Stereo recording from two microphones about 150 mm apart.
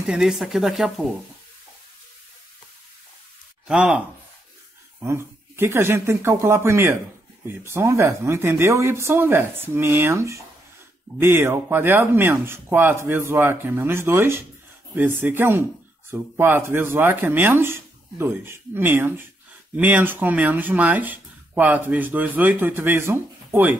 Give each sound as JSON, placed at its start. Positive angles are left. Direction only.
{"t": 0.0, "sound": "speech", "side_deg": -5}
{"t": 3.6, "sound": "speech", "side_deg": -5}
{"t": 5.0, "sound": "speech", "side_deg": -15}